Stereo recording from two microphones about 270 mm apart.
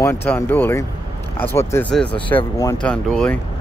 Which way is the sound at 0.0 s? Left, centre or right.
Centre.